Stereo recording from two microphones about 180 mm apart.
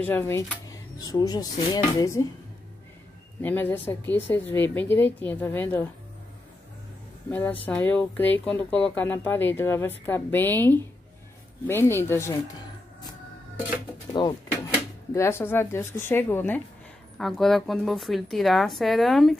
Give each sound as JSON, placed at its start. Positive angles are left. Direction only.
{"t": 0.0, "sound": "speech", "side_deg": 10}
{"t": 3.4, "sound": "speech", "side_deg": 10}
{"t": 7.2, "sound": "speech", "side_deg": 10}
{"t": 14.2, "sound": "speech", "side_deg": 25}
{"t": 15.1, "sound": "a woman's voice", "side_deg": 15}